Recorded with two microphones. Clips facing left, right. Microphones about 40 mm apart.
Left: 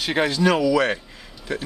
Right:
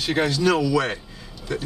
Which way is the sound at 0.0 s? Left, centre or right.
Left.